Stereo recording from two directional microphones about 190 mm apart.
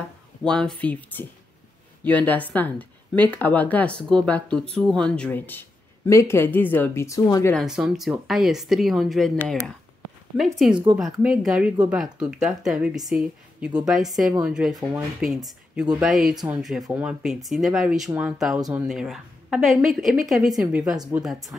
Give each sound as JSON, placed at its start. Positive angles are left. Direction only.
{"t": 0.4, "sound": "a woman's voice", "side_deg": 5}
{"t": 7.5, "sound": "a woman's voice", "side_deg": -5}
{"t": 10.3, "sound": "a woman's voice", "side_deg": 0}
{"t": 10.7, "sound": "a woman's voice", "side_deg": -25}
{"t": 11.0, "sound": "a woman's voice", "side_deg": 0}
{"t": 14.8, "sound": "speech", "side_deg": -15}
{"t": 15.1, "sound": "a woman's voice", "side_deg": -5}